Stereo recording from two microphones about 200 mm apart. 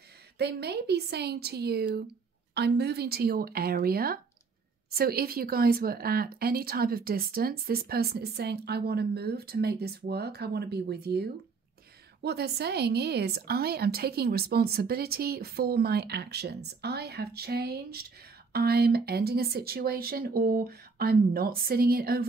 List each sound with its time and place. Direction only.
0.4 s speech: 55° right (ahead or behind)
12.2 s speech: 55° right (ahead or behind)